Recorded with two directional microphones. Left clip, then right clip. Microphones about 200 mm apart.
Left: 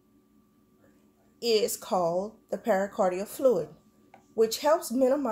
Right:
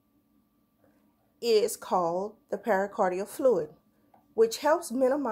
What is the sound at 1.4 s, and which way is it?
A woman's voice, 20° right (ahead or behind).